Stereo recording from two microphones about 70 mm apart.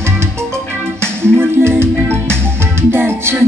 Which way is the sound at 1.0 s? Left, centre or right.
Right.